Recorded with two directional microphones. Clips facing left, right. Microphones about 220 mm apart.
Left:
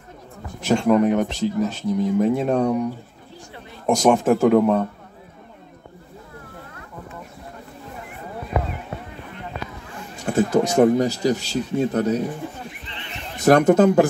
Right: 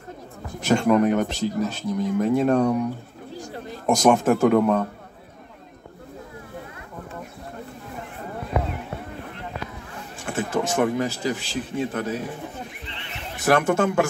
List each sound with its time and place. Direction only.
0.6 s speech: centre (ahead or behind)
3.8 s speech: centre (ahead or behind)
10.2 s speech: 40° left (ahead or behind)
13.4 s speech: 40° left (ahead or behind)